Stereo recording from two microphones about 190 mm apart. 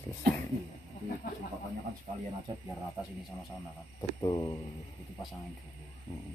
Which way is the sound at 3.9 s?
20° left (ahead or behind).